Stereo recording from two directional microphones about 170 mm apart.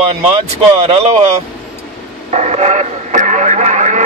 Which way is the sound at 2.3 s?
40° right (ahead or behind).